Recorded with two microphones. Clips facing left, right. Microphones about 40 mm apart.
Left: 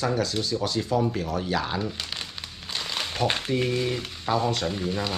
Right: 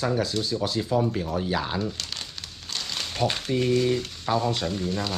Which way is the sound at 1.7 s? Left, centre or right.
Centre.